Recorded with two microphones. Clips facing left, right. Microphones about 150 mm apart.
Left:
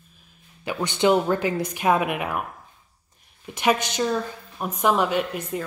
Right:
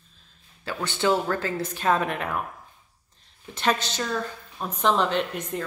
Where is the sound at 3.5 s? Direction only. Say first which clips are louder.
Left 3 dB; 15° left (ahead or behind).